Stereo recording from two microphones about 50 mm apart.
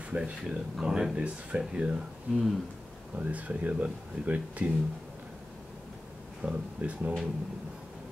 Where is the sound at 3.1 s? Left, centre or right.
Right.